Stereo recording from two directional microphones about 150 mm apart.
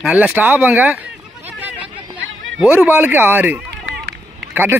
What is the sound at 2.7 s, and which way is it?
Speech, 10° right (ahead or behind).